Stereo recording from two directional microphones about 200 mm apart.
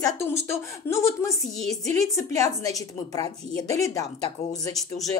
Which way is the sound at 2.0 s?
15° left (ahead or behind).